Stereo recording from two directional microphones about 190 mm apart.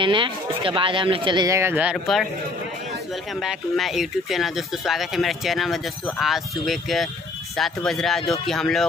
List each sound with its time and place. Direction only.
0.0 s speech: 25° right (ahead or behind); by 2.2 s 5° right (ahead or behind)
3.3 s speech: centre (ahead or behind)